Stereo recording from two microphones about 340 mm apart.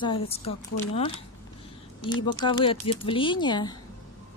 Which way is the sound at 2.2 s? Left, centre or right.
Centre.